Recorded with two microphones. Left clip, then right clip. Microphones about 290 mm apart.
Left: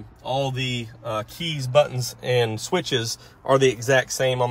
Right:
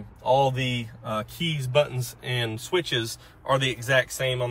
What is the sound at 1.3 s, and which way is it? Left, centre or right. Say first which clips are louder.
A man's voice: left 4 dB; centre.